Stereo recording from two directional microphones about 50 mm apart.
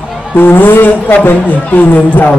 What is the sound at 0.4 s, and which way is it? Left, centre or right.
Speech, left.